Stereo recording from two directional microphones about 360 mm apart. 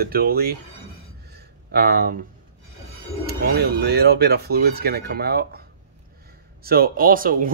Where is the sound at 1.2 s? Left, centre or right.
Right.